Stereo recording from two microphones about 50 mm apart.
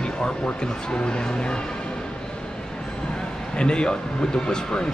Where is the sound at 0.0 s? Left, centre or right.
Centre.